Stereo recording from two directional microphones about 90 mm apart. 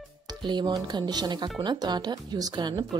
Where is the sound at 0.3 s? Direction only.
55° right (ahead or behind).